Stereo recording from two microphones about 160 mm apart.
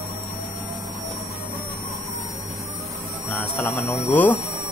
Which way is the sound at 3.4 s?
15° left (ahead or behind).